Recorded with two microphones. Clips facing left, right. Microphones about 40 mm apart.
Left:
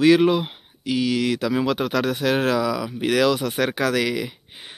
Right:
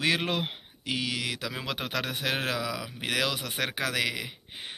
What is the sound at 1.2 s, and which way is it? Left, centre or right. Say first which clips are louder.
Speech: left 12 dB; centre.